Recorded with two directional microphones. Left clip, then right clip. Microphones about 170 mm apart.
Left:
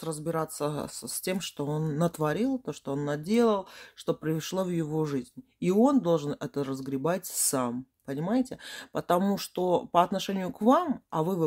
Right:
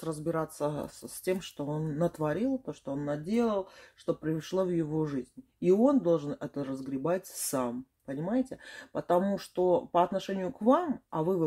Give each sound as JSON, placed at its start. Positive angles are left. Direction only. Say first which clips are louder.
{"t": 0.0, "sound": "speech", "louder": "left 1 dB", "side_deg": 30}